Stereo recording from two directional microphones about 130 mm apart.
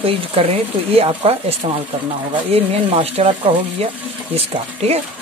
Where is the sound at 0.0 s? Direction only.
45° right (ahead or behind).